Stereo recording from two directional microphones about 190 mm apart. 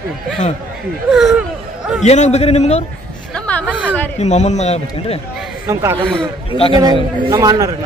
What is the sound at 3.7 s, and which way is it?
Speech, 10° right (ahead or behind).